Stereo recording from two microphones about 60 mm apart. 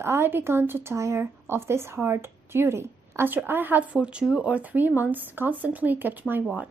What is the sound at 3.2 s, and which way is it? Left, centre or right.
Speech, right.